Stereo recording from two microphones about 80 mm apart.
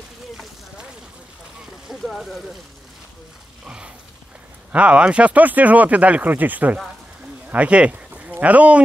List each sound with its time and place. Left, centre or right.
1.9 s speech: centre
3.6 s mechanisms: centre
4.7 s speech: centre